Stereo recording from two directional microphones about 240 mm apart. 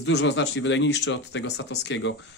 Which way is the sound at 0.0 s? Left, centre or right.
Left.